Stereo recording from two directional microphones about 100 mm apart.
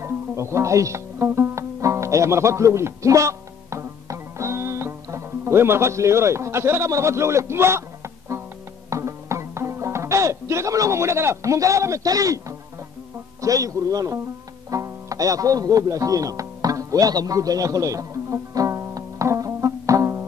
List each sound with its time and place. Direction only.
0.0 s speech: 30° right (ahead or behind)
8.9 s music: 30° right (ahead or behind)
13.4 s speech: 35° right (ahead or behind)
14.7 s music: 35° right (ahead or behind)